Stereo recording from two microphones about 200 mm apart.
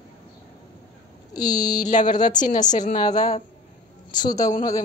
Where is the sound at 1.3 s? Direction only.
20° left (ahead or behind).